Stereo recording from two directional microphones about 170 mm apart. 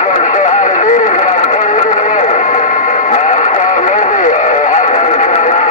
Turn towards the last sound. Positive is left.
turn(degrees=45)  # may be behind; listen again after turning